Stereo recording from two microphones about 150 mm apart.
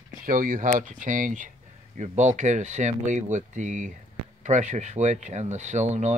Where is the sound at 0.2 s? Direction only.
65° right (ahead or behind).